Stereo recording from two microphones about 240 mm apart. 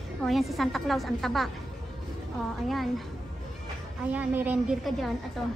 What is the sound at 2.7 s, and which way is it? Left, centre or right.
Speech, centre.